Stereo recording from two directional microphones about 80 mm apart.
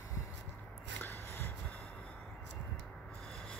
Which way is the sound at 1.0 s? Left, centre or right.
Left.